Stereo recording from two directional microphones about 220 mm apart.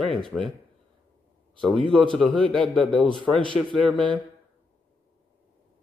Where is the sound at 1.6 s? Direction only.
5° left (ahead or behind).